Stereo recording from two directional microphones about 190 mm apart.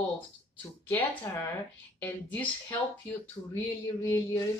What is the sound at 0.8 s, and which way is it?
Speech, 10° left (ahead or behind).